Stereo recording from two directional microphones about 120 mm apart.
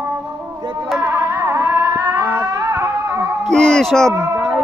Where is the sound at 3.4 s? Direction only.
5° left (ahead or behind).